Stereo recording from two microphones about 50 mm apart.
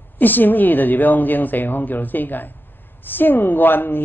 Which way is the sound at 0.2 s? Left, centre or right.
Left.